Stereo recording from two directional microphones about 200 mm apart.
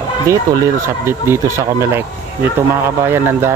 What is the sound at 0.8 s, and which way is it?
Speech, 10° right (ahead or behind).